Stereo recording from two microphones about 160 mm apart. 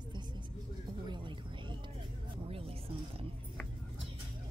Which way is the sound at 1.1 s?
30° right (ahead or behind).